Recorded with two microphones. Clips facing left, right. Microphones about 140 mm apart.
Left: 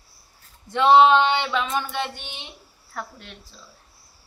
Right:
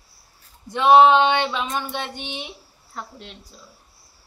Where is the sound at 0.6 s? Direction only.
15° right (ahead or behind).